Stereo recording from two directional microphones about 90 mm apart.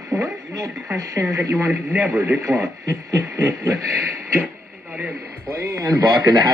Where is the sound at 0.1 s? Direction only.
40° right (ahead or behind).